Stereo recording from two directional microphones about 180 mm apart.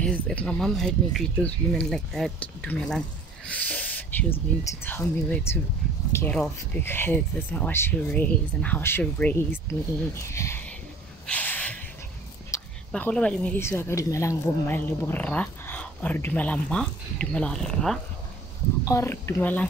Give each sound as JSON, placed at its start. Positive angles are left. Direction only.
{"t": 0.0, "sound": "speech", "side_deg": 5}
{"t": 3.4, "sound": "a sound", "side_deg": 10}
{"t": 4.6, "sound": "speech", "side_deg": 10}
{"t": 11.2, "sound": "a sound", "side_deg": 10}
{"t": 12.9, "sound": "speech", "side_deg": 5}
{"t": 18.9, "sound": "speech", "side_deg": 15}